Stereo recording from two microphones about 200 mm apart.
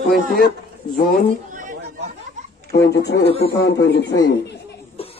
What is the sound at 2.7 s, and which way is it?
Speech, 55° left (ahead or behind).